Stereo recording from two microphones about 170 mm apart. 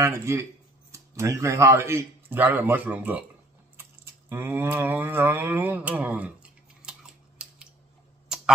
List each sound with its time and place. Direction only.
0.0 s speech: 15° right (ahead or behind)
3.7 s a sound: 10° right (ahead or behind)
8.3 s tick-tock: 5° right (ahead or behind)